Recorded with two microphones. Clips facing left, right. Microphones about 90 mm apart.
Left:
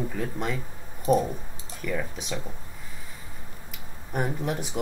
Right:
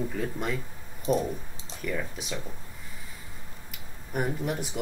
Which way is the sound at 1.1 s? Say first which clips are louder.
Left 4 dB; 40° left (ahead or behind).